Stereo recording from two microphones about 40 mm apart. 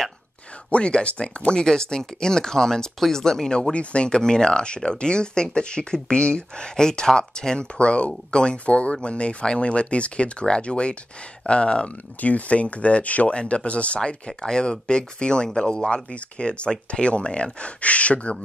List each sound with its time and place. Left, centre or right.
0.7 s speech: left
3.7 s speech: left
4.1 s speech: centre
12.2 s speech: left
13.3 s speech: left